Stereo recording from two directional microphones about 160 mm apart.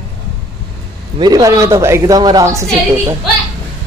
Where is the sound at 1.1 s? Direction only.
25° right (ahead or behind).